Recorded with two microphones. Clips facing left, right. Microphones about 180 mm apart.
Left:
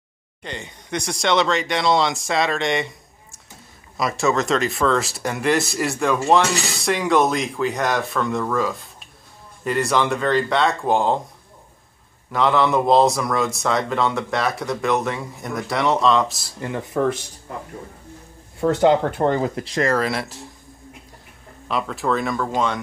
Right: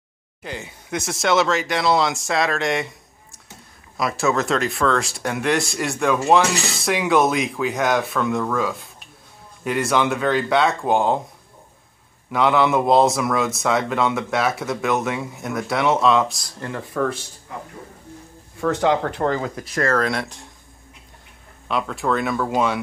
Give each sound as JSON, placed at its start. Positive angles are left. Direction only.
{"t": 0.4, "sound": "speech", "side_deg": -5}
{"t": 12.3, "sound": "speech", "side_deg": 0}
{"t": 18.6, "sound": "speech", "side_deg": 25}
{"t": 19.9, "sound": "speech", "side_deg": 5}
{"t": 21.6, "sound": "speech", "side_deg": 0}